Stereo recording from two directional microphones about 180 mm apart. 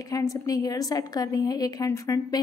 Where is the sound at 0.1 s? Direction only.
20° left (ahead or behind).